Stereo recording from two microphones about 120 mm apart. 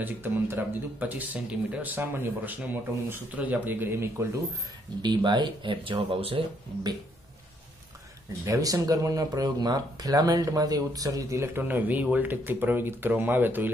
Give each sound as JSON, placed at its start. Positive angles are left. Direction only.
{"t": 0.0, "sound": "speech", "side_deg": -15}
{"t": 5.0, "sound": "speech", "side_deg": -40}
{"t": 8.5, "sound": "speech", "side_deg": -25}